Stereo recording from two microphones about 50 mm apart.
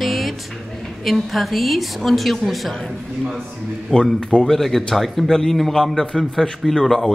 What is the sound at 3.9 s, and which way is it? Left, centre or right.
Speech, centre.